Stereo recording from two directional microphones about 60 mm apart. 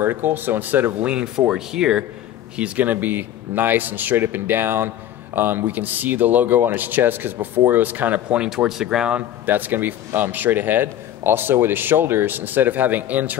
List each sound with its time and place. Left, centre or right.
0.0 s speech: right
1.0 s speech: centre
8.4 s speech: centre
9.5 s speech: right